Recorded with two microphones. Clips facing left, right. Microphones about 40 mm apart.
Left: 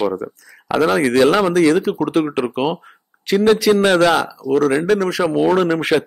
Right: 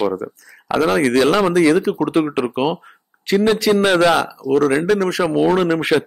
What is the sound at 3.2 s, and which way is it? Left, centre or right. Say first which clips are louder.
A man's voice: left 2 dB; centre.